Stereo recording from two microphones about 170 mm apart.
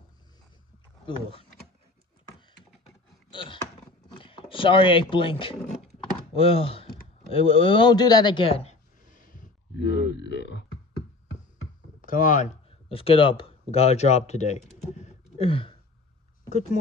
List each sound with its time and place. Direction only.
1.0 s speech: 30° left (ahead or behind)
3.3 s a sound: 30° left (ahead or behind)
4.2 s speech: 30° left (ahead or behind)
9.2 s a sound: 55° left (ahead or behind)
9.8 s burping: 90° left
12.0 s speech: 50° left (ahead or behind)
12.9 s speech: 35° left (ahead or behind)